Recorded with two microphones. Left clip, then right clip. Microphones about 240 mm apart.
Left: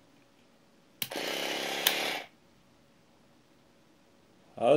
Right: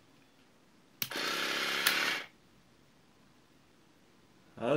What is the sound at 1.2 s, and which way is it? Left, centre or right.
Chainsaw, left.